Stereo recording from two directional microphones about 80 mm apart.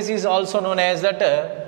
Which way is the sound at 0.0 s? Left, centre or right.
Centre.